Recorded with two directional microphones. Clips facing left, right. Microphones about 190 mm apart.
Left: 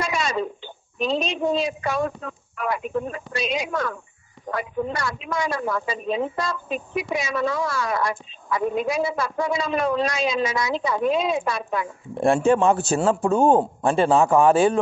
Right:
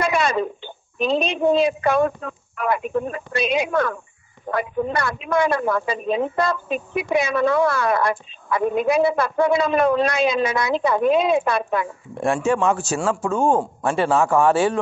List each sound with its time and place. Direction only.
0.0 s radio: 60° right (ahead or behind)
0.9 s a man's voice: 60° right (ahead or behind)
12.2 s speech: 30° left (ahead or behind)
13.6 s a man's voice: 20° left (ahead or behind)